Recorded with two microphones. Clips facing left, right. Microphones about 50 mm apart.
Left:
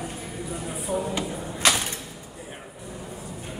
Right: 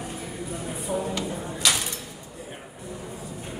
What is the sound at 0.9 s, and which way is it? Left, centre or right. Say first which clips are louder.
Speech: left 1 dB; centre.